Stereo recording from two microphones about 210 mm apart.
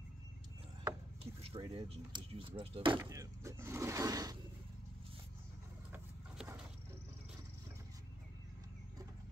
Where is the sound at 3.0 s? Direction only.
15° right (ahead or behind).